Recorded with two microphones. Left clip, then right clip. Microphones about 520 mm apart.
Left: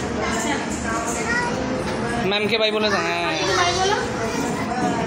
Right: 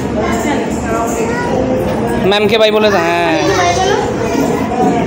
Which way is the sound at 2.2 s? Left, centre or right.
Left.